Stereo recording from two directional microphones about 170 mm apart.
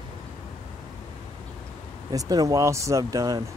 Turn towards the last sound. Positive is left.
turn(degrees=-20)  # may be behind; listen again after turning